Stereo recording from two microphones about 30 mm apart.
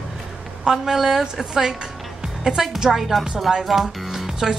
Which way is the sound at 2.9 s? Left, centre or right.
Centre.